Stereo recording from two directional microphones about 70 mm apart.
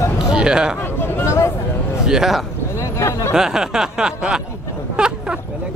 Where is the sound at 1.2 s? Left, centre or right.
Left.